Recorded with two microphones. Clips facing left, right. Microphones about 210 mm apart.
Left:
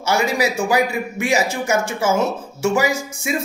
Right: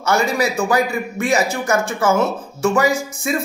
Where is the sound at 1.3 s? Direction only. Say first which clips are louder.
Right 1 dB; 30° left (ahead or behind).